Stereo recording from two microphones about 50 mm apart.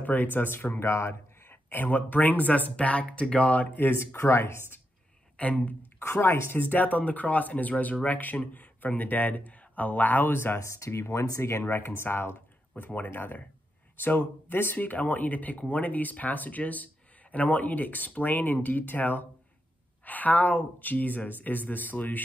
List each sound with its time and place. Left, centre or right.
0.0 s speech: left
0.8 s speech: left
4.0 s speech: left
5.4 s speech: left
5.9 s speech: left
6.7 s speech: left
10.6 s speech: left
11.6 s speech: left